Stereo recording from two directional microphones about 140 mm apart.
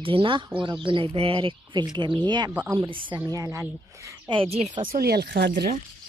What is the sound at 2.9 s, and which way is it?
Speech, 35° right (ahead or behind).